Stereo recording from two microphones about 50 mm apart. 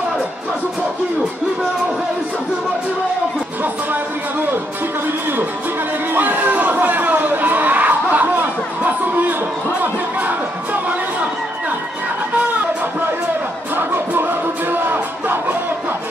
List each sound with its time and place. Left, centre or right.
3.6 s music: right
6.1 s crowd: right
10.2 s music: right
13.7 s music: right